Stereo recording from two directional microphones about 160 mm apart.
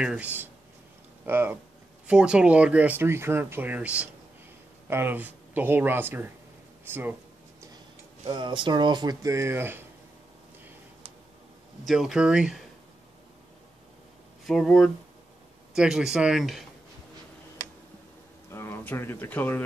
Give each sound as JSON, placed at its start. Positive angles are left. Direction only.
{"t": 0.0, "sound": "speech", "side_deg": -5}
{"t": 8.3, "sound": "speech", "side_deg": -30}
{"t": 11.8, "sound": "speech", "side_deg": 0}
{"t": 14.4, "sound": "speech", "side_deg": 0}
{"t": 18.5, "sound": "speech", "side_deg": 15}